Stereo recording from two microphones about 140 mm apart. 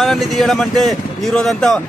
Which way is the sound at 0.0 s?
Centre (ahead or behind).